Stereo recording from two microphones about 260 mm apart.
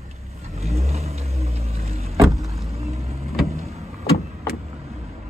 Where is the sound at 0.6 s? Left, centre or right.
Right.